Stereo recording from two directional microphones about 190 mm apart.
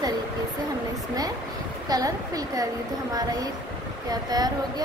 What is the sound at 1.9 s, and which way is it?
Speech, 20° right (ahead or behind).